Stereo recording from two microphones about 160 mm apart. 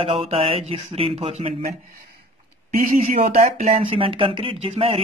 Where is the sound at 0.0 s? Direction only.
35° right (ahead or behind).